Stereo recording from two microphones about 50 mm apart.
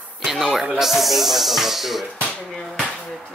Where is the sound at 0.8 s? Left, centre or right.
Centre.